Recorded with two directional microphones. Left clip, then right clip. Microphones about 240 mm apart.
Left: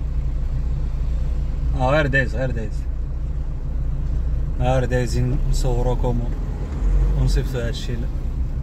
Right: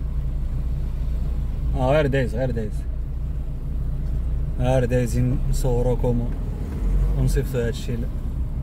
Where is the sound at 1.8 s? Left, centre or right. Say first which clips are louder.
Left 1 dB; right.